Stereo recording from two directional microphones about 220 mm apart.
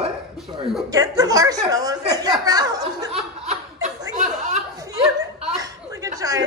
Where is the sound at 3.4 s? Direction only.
30° right (ahead or behind).